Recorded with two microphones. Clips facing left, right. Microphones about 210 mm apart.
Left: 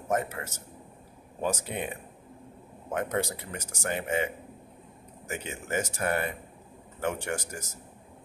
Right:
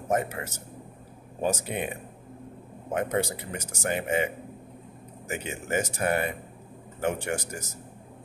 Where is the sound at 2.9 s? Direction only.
15° right (ahead or behind).